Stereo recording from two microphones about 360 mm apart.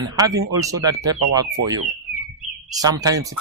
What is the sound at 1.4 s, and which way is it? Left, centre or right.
Speech, right.